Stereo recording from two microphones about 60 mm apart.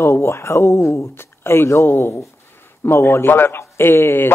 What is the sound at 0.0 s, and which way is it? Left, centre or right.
Speech, left.